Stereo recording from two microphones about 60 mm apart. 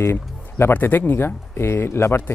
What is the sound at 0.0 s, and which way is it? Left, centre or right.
A man's voice, left.